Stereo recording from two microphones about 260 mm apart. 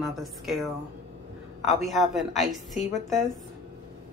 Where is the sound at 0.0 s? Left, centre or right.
Centre.